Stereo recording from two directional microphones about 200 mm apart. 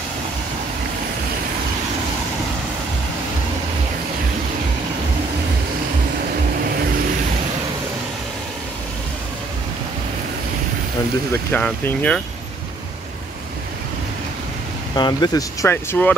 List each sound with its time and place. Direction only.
11.3 s speech: 10° left (ahead or behind)
15.0 s speech: 20° left (ahead or behind)